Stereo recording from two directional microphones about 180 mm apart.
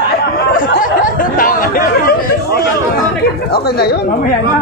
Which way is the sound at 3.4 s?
60° left (ahead or behind).